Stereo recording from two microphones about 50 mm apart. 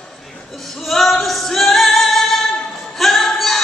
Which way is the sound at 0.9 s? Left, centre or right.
Centre.